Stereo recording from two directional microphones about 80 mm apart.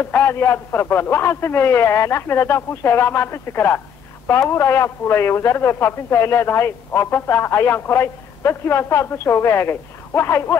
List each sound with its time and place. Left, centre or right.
0.0 s a man's voice: left